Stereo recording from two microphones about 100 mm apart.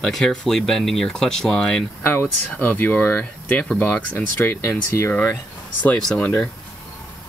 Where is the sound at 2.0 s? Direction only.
20° left (ahead or behind).